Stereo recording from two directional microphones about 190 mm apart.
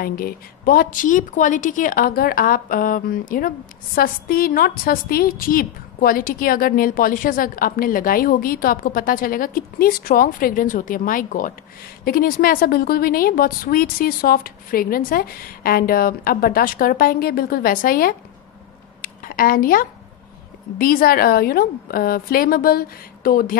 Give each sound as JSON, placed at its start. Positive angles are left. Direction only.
{"t": 0.0, "sound": "a woman's voice", "side_deg": 50}
{"t": 18.9, "sound": "a sound", "side_deg": 50}
{"t": 20.7, "sound": "a woman's voice", "side_deg": 50}